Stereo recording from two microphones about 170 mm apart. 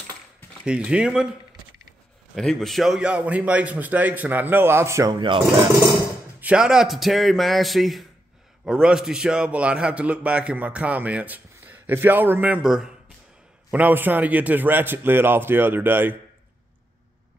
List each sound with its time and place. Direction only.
0.7 s speech: 5° right (ahead or behind)
2.3 s a man's voice: centre (ahead or behind); by 5.1 s 15° right (ahead or behind)
5.2 s speech: 30° right (ahead or behind)
6.4 s a man's voice: 5° right (ahead or behind)